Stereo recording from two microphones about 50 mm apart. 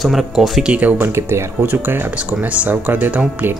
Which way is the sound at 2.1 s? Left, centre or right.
Right.